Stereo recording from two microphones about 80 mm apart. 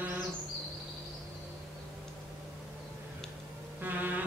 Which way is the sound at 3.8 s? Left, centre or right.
Right.